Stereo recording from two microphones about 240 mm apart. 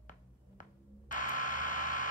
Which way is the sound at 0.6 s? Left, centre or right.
Left.